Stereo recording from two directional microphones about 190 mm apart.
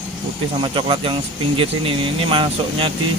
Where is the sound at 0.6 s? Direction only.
25° right (ahead or behind).